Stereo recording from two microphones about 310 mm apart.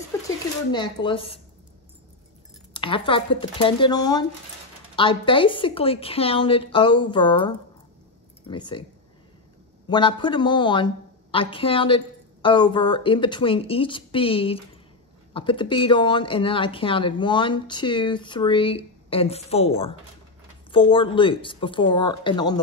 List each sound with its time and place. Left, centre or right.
0.7 s a woman's voice: centre
2.7 s a woman's voice: centre
9.8 s a woman's voice: centre